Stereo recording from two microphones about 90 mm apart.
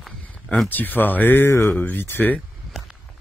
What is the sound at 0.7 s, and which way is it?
Speech, 20° left (ahead or behind).